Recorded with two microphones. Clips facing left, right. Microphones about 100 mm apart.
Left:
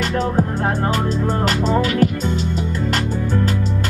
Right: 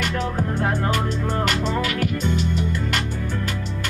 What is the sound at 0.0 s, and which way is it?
Music, 35° left (ahead or behind).